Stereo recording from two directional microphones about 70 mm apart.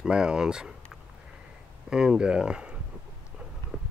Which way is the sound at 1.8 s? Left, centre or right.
Centre.